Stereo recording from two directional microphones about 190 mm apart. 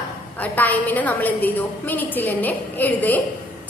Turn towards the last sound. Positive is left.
turn(degrees=10)  # may be behind; listen again after turning